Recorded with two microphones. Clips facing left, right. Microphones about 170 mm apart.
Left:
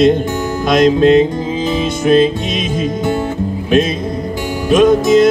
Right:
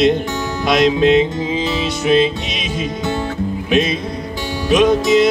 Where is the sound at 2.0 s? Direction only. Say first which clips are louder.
Left 3 dB; 45° left (ahead or behind).